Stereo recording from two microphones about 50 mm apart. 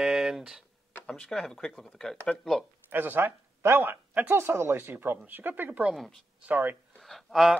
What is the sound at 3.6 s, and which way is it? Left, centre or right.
Speech, right.